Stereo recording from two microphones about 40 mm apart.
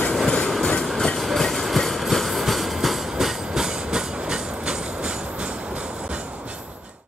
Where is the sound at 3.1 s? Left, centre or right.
Centre.